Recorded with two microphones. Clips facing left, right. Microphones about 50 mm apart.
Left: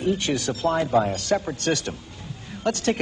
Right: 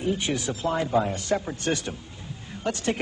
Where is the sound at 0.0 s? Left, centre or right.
Right.